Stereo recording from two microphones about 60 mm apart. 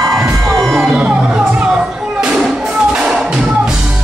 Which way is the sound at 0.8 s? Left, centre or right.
Centre.